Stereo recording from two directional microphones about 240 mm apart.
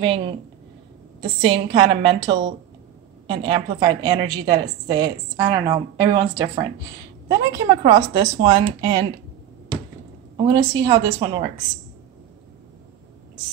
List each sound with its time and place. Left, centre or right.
0.0 s a woman's voice: right
7.5 s a woman's voice: right
8.1 s a woman's voice: centre
10.3 s a woman's voice: centre